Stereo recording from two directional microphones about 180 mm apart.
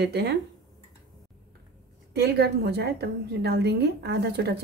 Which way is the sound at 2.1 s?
65° right (ahead or behind).